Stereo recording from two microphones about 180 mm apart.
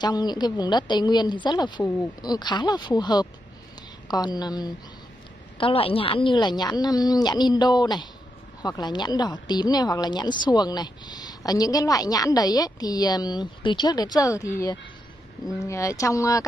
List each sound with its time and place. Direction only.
0.0 s a woman's voice: 25° left (ahead or behind)